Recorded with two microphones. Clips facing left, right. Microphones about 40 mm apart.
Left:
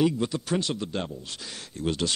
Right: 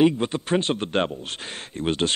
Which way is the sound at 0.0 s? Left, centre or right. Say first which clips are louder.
Right 5 dB; right.